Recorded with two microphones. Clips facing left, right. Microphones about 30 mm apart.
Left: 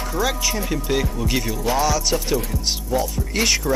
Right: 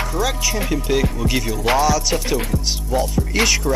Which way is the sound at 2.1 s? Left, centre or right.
Right.